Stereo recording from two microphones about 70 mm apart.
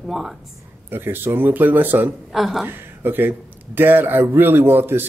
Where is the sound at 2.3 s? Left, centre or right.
Centre.